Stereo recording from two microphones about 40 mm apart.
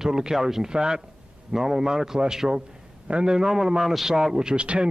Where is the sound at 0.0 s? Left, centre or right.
Centre.